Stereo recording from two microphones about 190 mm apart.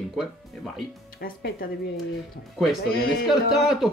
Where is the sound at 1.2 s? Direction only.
50° left (ahead or behind).